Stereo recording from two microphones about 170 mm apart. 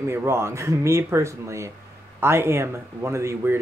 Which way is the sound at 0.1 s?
15° right (ahead or behind).